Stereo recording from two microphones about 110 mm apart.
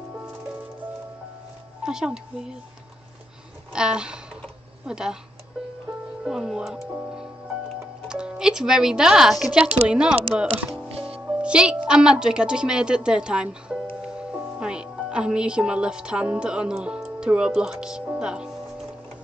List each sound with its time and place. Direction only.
0.1 s music: 15° right (ahead or behind)
1.8 s speech: 5° right (ahead or behind)
3.7 s a sound: 10° right (ahead or behind)
4.8 s speech: 5° right (ahead or behind)
6.2 s speech: 5° right (ahead or behind)
7.1 s music: 10° right (ahead or behind)
8.1 s speech: 10° right (ahead or behind)
11.1 s music: 10° right (ahead or behind)
11.9 s speech: 5° right (ahead or behind)
14.0 s music: 10° right (ahead or behind)